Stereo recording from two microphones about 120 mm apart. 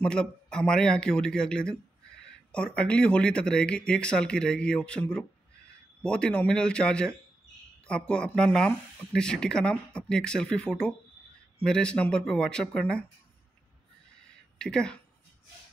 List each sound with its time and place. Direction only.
0.0 s speech: 10° left (ahead or behind)
14.6 s speech: 5° left (ahead or behind)